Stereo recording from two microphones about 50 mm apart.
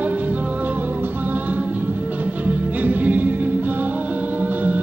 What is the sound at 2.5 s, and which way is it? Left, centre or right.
Music, right.